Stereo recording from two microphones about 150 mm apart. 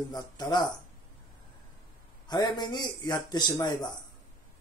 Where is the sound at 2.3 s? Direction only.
25° left (ahead or behind).